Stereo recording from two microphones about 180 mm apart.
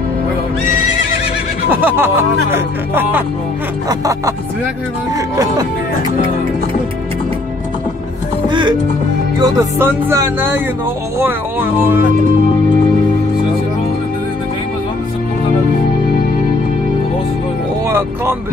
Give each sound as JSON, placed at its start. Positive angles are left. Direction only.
{"t": 1.7, "sound": "music", "side_deg": -10}
{"t": 8.5, "sound": "speech", "side_deg": -25}
{"t": 9.4, "sound": "music", "side_deg": -15}
{"t": 17.8, "sound": "music", "side_deg": -15}